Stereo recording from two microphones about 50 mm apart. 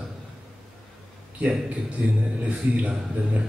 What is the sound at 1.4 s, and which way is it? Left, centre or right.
A man's voice, right.